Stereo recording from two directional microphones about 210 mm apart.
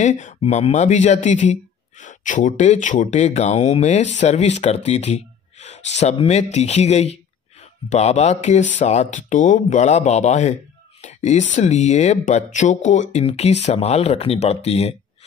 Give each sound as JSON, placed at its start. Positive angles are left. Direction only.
{"t": 0.0, "sound": "speech", "side_deg": 35}